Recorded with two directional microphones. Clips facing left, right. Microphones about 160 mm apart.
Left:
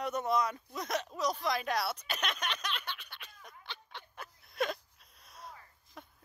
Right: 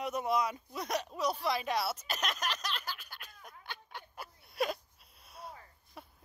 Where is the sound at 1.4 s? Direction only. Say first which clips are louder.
Even; centre (ahead or behind).